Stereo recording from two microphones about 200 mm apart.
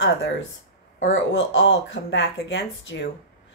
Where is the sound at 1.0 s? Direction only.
70° left (ahead or behind).